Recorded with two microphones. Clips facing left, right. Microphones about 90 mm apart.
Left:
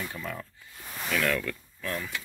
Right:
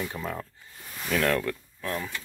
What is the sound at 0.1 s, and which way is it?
Speech, 30° right (ahead or behind).